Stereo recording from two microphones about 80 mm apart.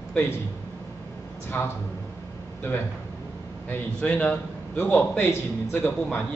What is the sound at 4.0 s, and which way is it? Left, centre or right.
A man's voice, centre.